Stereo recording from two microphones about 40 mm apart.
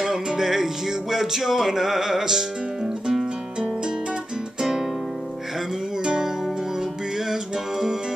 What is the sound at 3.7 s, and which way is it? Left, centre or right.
Music, right.